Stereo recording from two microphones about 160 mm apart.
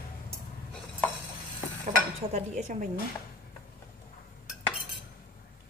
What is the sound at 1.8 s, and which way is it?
Dishes, 45° right (ahead or behind).